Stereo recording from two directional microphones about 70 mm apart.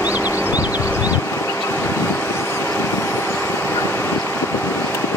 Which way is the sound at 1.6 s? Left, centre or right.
Left.